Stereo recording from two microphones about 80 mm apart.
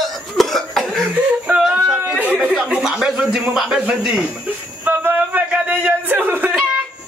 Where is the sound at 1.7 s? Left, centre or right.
Centre.